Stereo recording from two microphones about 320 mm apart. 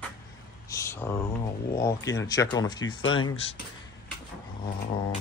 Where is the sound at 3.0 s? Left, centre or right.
Left.